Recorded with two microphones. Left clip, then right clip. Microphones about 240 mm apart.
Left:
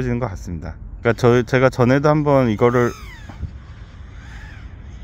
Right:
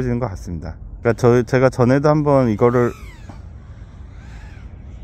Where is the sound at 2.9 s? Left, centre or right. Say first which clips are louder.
Even; left.